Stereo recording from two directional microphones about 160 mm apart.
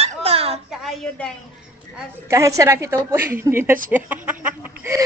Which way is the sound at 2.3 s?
20° right (ahead or behind).